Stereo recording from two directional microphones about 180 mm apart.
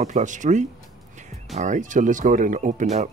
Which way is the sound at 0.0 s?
45° right (ahead or behind).